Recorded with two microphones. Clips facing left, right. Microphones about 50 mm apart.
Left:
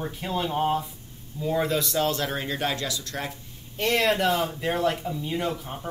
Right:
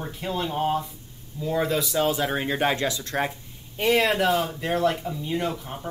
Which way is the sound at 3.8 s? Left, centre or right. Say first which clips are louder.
Right 2 dB; centre.